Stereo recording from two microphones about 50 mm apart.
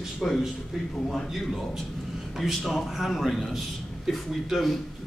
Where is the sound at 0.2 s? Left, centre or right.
Centre.